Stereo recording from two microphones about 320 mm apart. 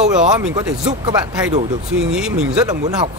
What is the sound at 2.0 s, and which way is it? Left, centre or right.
Speech, centre.